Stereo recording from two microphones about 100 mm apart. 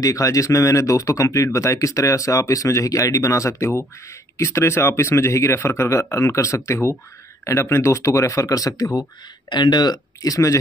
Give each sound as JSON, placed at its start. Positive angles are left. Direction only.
{"t": 0.0, "sound": "speech", "side_deg": 35}
{"t": 9.5, "sound": "speech", "side_deg": 50}